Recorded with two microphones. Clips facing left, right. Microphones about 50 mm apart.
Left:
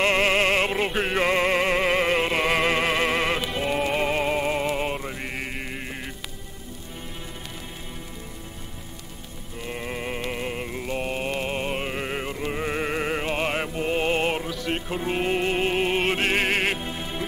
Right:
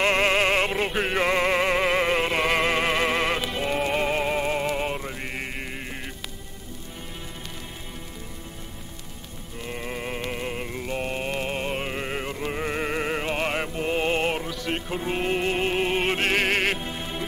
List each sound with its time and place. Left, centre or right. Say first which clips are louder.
0.6 s music: even; centre
9.6 s music: left 1 dB; centre
16.3 s music: even; left
16.7 s music: left 1 dB; centre